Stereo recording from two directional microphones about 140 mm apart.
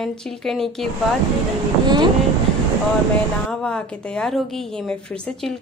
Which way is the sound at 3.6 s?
5° left (ahead or behind).